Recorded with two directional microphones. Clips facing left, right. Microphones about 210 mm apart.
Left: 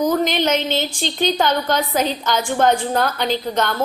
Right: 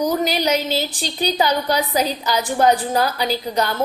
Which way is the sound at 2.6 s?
5° right (ahead or behind).